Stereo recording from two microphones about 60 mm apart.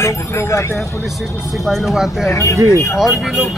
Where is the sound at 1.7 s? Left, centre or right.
Centre.